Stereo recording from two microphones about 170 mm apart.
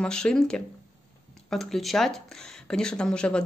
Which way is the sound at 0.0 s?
5° left (ahead or behind).